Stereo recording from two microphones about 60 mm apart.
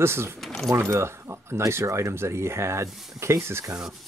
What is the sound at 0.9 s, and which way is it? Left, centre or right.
Speech, right.